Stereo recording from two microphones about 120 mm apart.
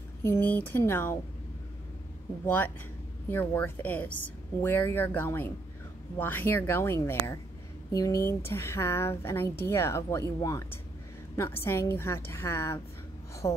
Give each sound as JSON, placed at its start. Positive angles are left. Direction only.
{"t": 0.2, "sound": "speech", "side_deg": 15}
{"t": 2.4, "sound": "a woman's voice", "side_deg": 15}
{"t": 11.3, "sound": "a woman's voice", "side_deg": 20}